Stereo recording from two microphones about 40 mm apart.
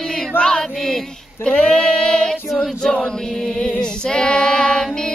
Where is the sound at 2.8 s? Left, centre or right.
Centre.